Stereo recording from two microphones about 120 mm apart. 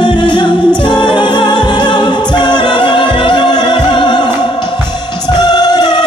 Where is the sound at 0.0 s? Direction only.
40° left (ahead or behind).